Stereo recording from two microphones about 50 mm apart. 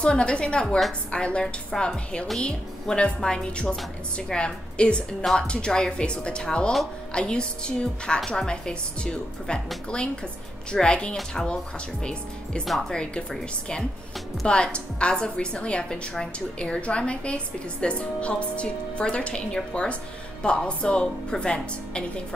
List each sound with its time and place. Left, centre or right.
0.0 s a woman's voice: left
1.7 s a woman's voice: centre
10.7 s a woman's voice: centre
12.6 s a woman's voice: centre
12.9 s a woman's voice: centre